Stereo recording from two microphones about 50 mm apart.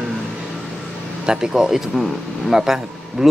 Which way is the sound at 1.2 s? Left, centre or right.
Centre.